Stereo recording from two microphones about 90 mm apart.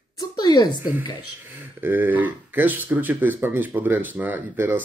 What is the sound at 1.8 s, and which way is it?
Speech, 20° right (ahead or behind).